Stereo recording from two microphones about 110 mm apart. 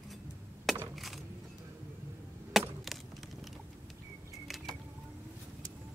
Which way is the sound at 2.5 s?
Centre (ahead or behind).